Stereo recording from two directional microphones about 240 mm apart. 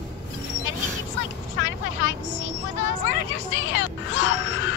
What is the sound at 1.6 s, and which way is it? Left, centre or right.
Vehicle, left.